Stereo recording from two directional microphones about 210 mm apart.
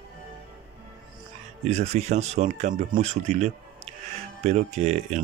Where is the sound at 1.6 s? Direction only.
30° right (ahead or behind).